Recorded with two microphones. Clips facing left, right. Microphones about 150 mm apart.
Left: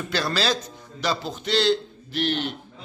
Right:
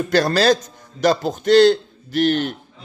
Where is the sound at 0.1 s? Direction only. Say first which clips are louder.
Right 9 dB; 45° right (ahead or behind).